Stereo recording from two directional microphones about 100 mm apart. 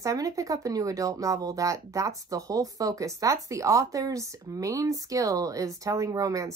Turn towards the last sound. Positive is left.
turn(degrees=-35)  # may be behind; listen again after turning